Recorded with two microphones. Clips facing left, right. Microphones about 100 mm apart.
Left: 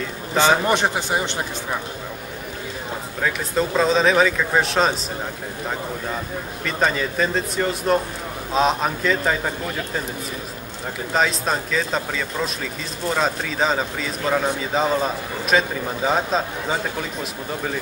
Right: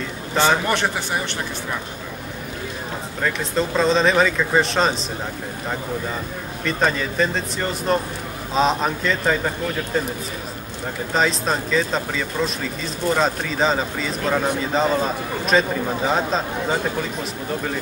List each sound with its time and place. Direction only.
0.4 s a man's voice: 15° left (ahead or behind)
3.2 s speech: 5° left (ahead or behind)
6.6 s speech: centre (ahead or behind)
11.1 s speech: centre (ahead or behind)